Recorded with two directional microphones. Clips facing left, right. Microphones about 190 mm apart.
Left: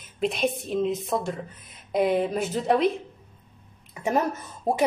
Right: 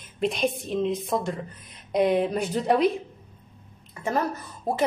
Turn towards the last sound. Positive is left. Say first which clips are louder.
# left 2 dB
turn(degrees=20)  # may be behind; listen again after turning